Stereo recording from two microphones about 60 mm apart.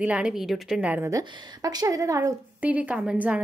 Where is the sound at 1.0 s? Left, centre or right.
Right.